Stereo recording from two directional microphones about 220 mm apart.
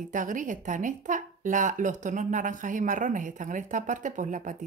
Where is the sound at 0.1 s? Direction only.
35° right (ahead or behind).